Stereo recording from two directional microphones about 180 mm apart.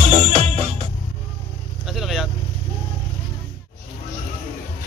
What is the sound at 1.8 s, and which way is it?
Vehicle, centre (ahead or behind).